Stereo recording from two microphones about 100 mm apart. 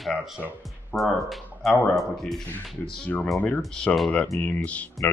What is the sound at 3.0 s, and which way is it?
Speech, 15° left (ahead or behind).